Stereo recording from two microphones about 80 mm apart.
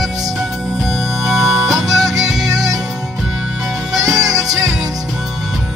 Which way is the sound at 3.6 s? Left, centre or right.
Centre.